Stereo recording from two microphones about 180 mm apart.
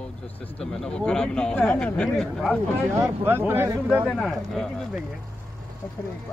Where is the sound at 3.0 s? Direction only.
10° right (ahead or behind).